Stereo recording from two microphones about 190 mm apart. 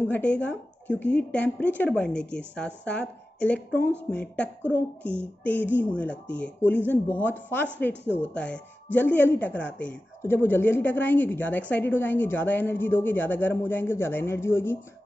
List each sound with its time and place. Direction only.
0.0 s a woman's voice: 10° left (ahead or behind)